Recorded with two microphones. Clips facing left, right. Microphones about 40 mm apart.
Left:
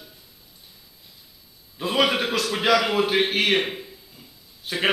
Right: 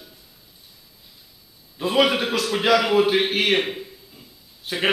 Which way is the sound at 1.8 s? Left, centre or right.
Centre.